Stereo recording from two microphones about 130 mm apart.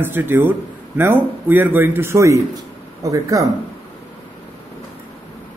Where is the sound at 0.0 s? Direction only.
15° right (ahead or behind).